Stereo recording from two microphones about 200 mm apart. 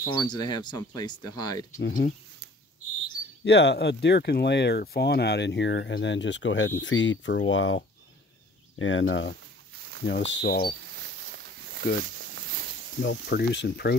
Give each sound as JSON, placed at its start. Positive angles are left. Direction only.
{"t": 0.1, "sound": "speech", "side_deg": 20}
{"t": 1.8, "sound": "speech", "side_deg": 55}
{"t": 3.4, "sound": "speech", "side_deg": 60}
{"t": 10.9, "sound": "a sound", "side_deg": -55}
{"t": 13.0, "sound": "speech", "side_deg": 55}